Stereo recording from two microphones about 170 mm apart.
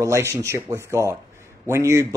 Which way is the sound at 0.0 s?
15° right (ahead or behind).